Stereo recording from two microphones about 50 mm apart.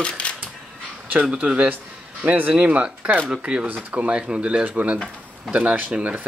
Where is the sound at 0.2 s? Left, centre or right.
Left.